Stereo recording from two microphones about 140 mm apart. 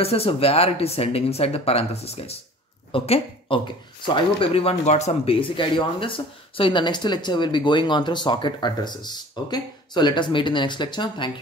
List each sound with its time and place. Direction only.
0.0 s speech: 45° left (ahead or behind)